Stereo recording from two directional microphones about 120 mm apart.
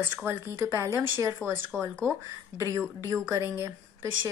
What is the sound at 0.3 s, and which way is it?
Speech, 20° right (ahead or behind).